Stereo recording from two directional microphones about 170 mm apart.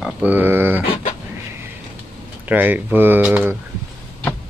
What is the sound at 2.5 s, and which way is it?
Speech, 10° right (ahead or behind).